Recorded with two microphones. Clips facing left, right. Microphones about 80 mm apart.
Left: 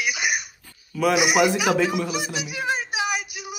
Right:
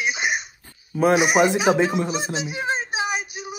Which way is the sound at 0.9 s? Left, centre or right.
Right.